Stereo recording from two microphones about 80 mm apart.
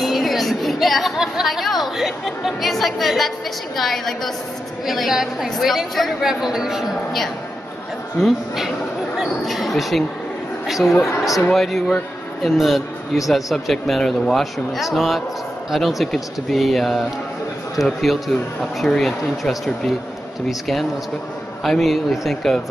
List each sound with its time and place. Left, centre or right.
0.0 s a woman's voice: centre